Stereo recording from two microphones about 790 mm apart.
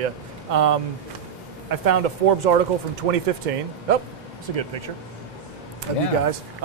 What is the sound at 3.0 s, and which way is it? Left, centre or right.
Speech, right.